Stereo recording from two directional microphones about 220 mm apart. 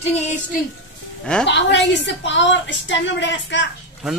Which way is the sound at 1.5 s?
55° left (ahead or behind).